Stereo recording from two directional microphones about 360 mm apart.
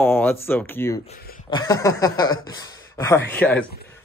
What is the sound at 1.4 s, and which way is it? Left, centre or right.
Speech, centre.